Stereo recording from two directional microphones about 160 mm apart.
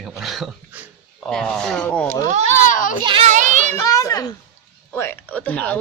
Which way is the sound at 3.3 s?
50° right (ahead or behind).